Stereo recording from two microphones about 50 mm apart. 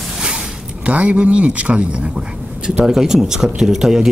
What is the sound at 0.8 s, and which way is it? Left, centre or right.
Speech, right.